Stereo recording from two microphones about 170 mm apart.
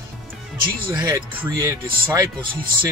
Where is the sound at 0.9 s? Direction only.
25° right (ahead or behind).